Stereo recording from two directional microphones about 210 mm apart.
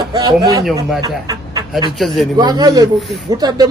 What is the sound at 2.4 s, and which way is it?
Speech, 20° right (ahead or behind).